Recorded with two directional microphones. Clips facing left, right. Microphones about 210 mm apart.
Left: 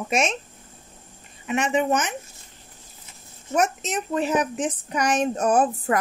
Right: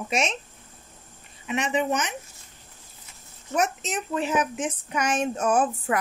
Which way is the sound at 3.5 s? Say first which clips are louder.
Left 3 dB; 45° left (ahead or behind).